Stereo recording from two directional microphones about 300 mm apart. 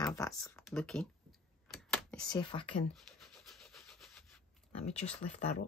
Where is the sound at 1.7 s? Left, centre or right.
Centre.